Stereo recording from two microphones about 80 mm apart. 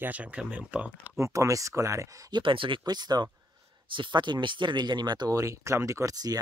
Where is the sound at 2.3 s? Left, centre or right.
Right.